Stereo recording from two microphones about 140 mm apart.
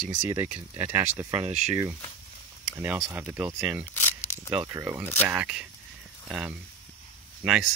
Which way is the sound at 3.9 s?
15° left (ahead or behind).